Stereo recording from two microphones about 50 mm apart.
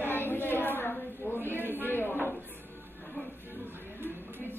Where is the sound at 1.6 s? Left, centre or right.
Right.